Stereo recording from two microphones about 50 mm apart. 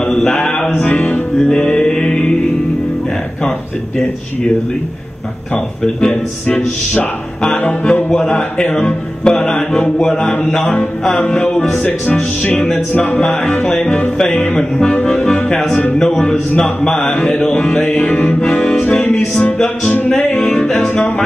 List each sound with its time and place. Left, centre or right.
0.1 s mantra: centre
0.8 s music: left
5.9 s speech: centre
9.4 s music: centre
9.9 s speech: centre
11.1 s music: left
12.1 s music: left
14.1 s speech: centre
15.0 s accordion: centre
16.0 s speech: centre
17.8 s music: left
18.4 s speech: centre
20.3 s music: centre